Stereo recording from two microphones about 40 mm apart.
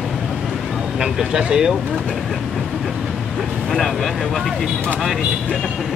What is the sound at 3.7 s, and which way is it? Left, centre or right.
Speech, centre.